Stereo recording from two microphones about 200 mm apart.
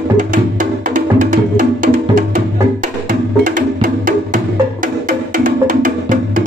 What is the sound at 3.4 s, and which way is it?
Wood block, 40° right (ahead or behind).